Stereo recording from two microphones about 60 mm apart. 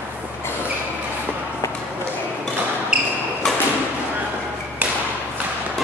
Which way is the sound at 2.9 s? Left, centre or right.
Centre.